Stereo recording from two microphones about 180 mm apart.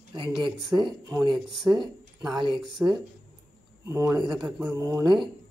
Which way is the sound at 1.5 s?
Centre (ahead or behind).